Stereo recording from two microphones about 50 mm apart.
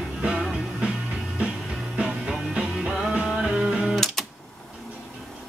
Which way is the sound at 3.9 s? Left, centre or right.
Centre.